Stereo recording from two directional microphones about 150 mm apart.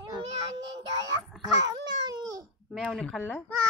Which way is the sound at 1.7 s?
25° right (ahead or behind).